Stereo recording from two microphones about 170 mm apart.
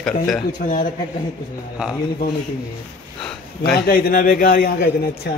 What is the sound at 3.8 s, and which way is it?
A man's voice, 60° left (ahead or behind).